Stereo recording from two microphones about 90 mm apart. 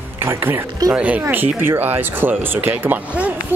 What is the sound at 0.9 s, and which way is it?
Speech, 15° right (ahead or behind).